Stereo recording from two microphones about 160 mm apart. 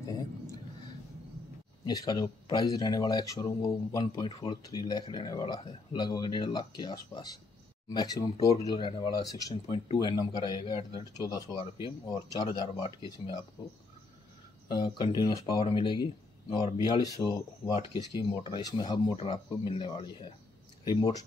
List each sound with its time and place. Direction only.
1.9 s speech: 25° left (ahead or behind)
12.8 s speech: 35° left (ahead or behind)
14.7 s speech: 25° left (ahead or behind)